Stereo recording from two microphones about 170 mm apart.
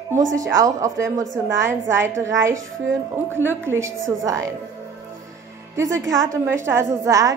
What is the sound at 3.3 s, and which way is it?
A woman's voice, 15° right (ahead or behind).